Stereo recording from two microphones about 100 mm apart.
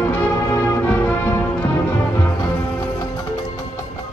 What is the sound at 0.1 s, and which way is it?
Music, 20° left (ahead or behind).